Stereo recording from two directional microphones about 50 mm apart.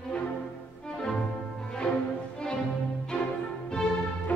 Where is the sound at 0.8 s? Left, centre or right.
Centre.